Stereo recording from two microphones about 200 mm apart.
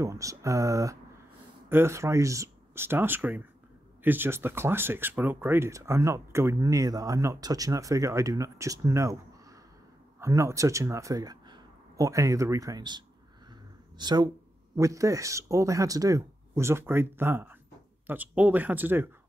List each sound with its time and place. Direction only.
0.0 s speech: 15° right (ahead or behind)
10.2 s speech: 15° right (ahead or behind)